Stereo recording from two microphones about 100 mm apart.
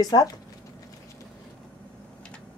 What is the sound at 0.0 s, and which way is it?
Speech, 40° left (ahead or behind).